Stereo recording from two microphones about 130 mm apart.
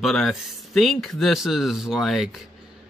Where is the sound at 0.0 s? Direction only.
Centre (ahead or behind).